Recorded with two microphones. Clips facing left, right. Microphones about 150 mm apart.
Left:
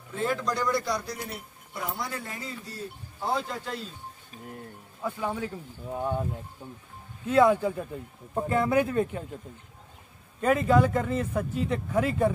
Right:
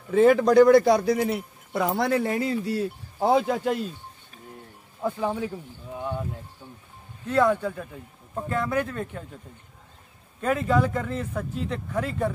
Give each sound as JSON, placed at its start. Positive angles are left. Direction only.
{"t": 0.1, "sound": "speech", "side_deg": -65}
{"t": 5.0, "sound": "speech", "side_deg": -15}
{"t": 6.6, "sound": "speech", "side_deg": 10}
{"t": 10.4, "sound": "speech", "side_deg": 5}